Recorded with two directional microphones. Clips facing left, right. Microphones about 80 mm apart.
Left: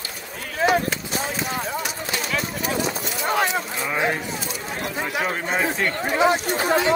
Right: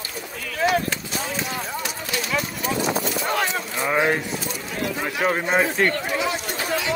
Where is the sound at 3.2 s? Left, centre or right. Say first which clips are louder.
Left 2 dB; centre.